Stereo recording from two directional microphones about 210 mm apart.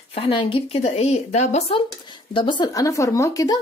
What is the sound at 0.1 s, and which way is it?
Speech, 25° left (ahead or behind).